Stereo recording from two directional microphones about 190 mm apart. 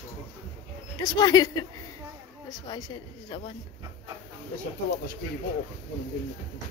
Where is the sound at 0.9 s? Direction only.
20° left (ahead or behind).